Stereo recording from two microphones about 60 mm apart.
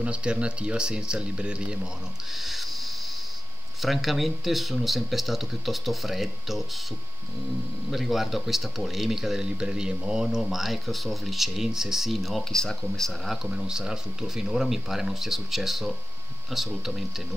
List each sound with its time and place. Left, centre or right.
0.0 s speech: centre
2.3 s speech: centre
3.8 s speech: centre
7.9 s speech: centre
13.3 s speech: centre